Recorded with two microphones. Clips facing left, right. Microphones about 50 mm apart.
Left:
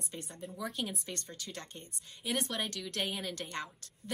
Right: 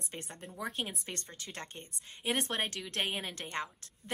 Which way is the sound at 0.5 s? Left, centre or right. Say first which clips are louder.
Even; right.